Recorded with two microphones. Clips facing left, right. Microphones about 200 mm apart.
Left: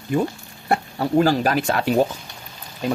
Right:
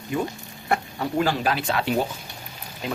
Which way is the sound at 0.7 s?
35° left (ahead or behind).